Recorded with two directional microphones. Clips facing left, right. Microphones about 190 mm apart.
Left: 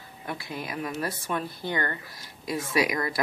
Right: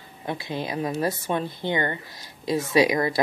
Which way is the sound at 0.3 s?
25° right (ahead or behind).